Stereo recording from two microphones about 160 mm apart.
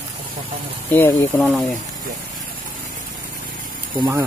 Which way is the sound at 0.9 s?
15° left (ahead or behind).